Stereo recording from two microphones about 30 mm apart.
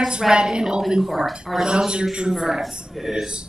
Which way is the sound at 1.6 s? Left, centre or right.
Right.